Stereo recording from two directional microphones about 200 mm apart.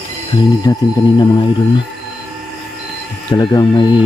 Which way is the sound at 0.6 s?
20° left (ahead or behind).